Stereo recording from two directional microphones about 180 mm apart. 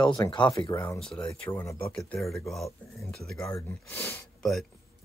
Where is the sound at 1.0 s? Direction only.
5° left (ahead or behind).